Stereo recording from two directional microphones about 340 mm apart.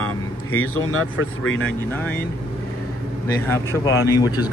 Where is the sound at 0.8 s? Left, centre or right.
Left.